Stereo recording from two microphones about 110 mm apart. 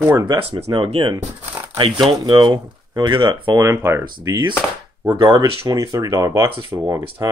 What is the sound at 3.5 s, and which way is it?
Speech, 25° right (ahead or behind).